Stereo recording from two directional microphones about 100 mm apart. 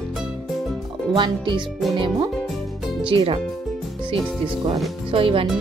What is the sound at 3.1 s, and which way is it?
Speech, 60° right (ahead or behind).